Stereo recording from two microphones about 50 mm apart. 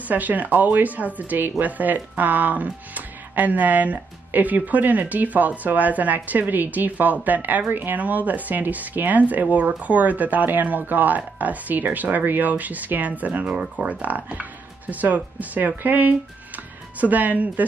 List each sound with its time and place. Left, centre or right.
0.1 s speech: right